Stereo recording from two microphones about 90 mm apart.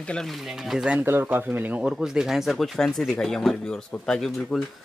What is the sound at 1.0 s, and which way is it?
Speech, 25° right (ahead or behind).